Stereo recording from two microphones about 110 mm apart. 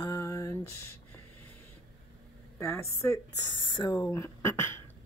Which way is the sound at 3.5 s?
45° left (ahead or behind).